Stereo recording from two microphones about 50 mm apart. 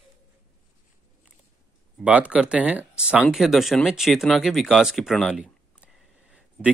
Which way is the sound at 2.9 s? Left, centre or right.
Centre.